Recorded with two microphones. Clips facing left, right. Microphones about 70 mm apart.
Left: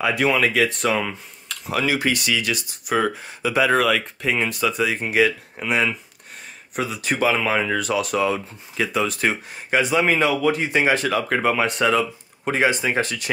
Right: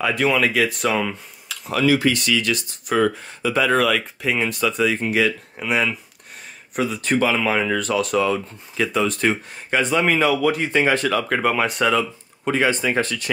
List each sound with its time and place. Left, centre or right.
0.0 s speech: centre
1.7 s speech: centre
5.6 s speech: centre
10.7 s speech: centre
12.4 s speech: centre